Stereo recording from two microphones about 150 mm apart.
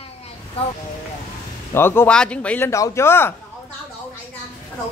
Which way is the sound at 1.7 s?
15° left (ahead or behind).